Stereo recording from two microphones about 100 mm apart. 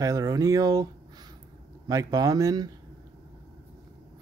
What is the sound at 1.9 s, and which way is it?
Speech, 35° right (ahead or behind).